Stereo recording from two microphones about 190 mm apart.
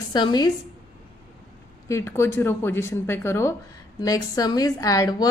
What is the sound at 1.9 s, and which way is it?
A woman's voice, 15° left (ahead or behind).